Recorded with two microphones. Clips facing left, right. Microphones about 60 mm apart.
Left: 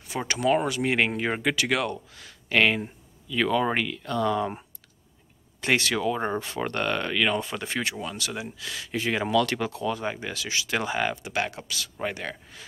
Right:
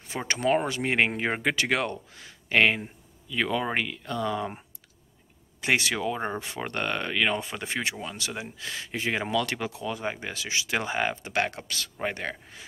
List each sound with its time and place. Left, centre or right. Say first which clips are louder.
0.3 s speech: left 1 dB; right; by 4.6 s centre
5.6 s speech: left 1 dB; centre
8.4 s speech: left 1 dB; right
11.3 s speech: right 1 dB; right